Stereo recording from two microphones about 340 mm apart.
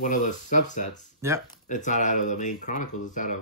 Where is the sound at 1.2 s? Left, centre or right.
Centre.